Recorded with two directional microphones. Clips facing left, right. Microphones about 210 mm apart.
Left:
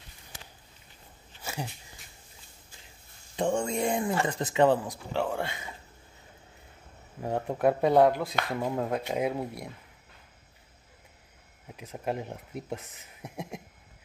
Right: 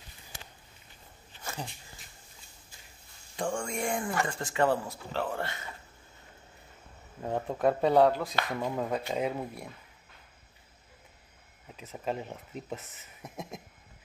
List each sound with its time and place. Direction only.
1.4 s a sound: 10° left (ahead or behind)
3.3 s speech: 20° left (ahead or behind)
7.2 s speech: 15° left (ahead or behind)
11.6 s speech: 10° left (ahead or behind)